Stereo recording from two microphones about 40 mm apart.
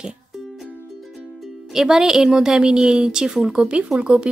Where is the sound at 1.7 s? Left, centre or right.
Centre.